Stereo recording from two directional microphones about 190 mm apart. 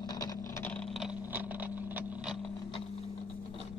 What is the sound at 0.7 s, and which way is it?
Vehicle, centre (ahead or behind).